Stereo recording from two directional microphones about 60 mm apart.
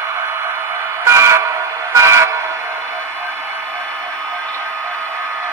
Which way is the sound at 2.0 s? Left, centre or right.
Right.